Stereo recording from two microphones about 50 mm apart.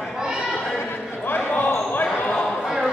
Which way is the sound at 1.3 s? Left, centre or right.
Left.